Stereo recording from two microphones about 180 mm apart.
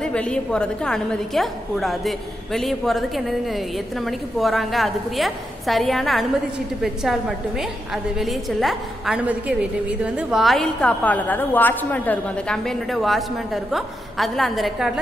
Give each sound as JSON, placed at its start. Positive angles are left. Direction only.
{"t": 0.0, "sound": "a woman's voice", "side_deg": 5}